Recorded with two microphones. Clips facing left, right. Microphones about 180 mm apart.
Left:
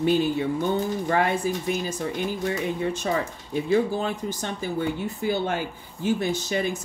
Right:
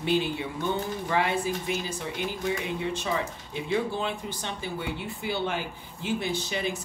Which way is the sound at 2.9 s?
45° left (ahead or behind).